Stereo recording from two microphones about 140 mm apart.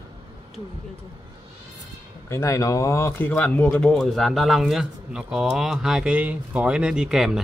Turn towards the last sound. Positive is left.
turn(degrees=-5)  # may be behind; listen again after turning